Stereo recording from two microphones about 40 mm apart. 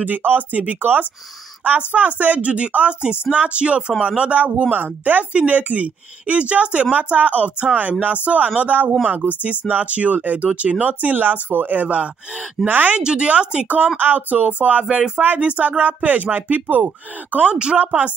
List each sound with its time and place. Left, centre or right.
0.0 s speech: right
1.8 s speech: right
12.6 s a woman's voice: centre
13.0 s speech: right
13.9 s speech: right
17.5 s speech: right
17.7 s speech: right